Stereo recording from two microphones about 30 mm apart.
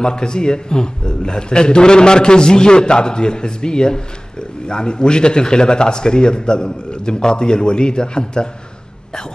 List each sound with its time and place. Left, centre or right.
0.0 s a man's voice: left